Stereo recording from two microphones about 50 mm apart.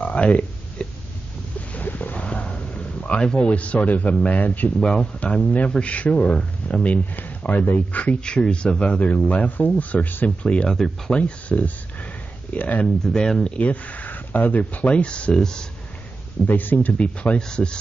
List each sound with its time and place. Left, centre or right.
0.0 s a sound: left
1.7 s a sound: left
3.3 s speech: left
10.4 s speech: left
12.8 s speech: centre
13.6 s speech: left
15.3 s speech: centre
16.4 s speech: left
17.4 s speech: centre